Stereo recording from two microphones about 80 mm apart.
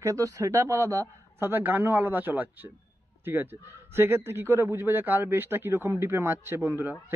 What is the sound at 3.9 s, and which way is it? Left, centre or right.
A man's voice, right.